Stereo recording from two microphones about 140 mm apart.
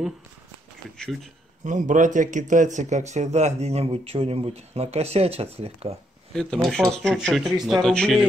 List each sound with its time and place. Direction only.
0.9 s speech: 5° left (ahead or behind)
1.6 s speech: 65° right (ahead or behind); by 5.9 s 45° right (ahead or behind)
6.3 s speech: 5° left (ahead or behind)